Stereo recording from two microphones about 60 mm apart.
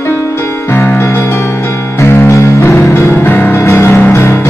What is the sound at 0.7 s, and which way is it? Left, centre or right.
Music, left.